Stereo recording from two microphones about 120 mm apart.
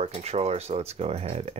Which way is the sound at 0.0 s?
60° right (ahead or behind).